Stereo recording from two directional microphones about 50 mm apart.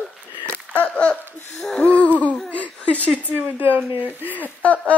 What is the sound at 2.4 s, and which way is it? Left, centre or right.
Laughter, left.